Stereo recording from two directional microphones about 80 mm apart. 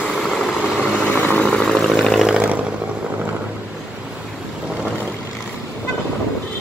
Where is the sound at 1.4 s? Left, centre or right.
Centre.